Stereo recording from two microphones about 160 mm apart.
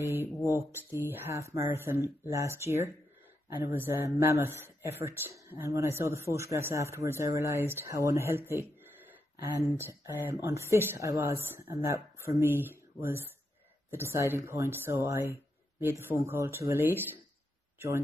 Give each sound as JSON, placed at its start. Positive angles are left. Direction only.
{"t": 0.5, "sound": "speech", "side_deg": -15}
{"t": 8.5, "sound": "a sound", "side_deg": -15}
{"t": 9.8, "sound": "a man's voice", "side_deg": -15}